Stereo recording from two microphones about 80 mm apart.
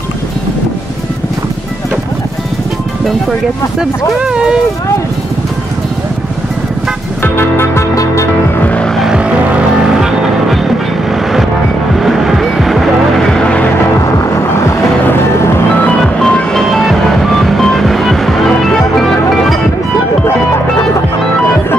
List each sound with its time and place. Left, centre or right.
4.2 s speech: centre
7.3 s music: left
8.6 s vehicle: centre
8.9 s vehicle: centre
9.8 s music: centre
11.9 s vehicle: centre
14.3 s vehicle: left
16.0 s vehicle: centre